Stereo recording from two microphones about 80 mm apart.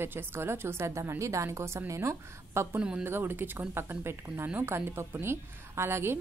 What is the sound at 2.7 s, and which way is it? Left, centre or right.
Speech, centre.